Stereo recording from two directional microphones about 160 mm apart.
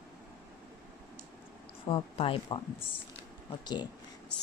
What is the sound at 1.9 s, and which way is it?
Speech, 35° left (ahead or behind).